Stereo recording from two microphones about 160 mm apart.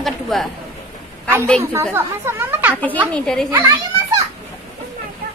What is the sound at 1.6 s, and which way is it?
Chatter, 15° right (ahead or behind).